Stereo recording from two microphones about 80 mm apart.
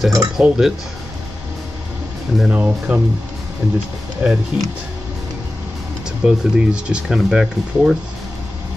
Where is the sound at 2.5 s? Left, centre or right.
Centre.